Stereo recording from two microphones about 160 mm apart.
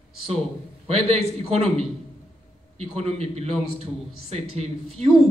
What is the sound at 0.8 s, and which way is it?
A man's voice, 40° right (ahead or behind).